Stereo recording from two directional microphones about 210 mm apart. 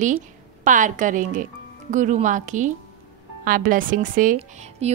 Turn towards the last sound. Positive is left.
turn(degrees=-30)  # may be behind; listen again after turning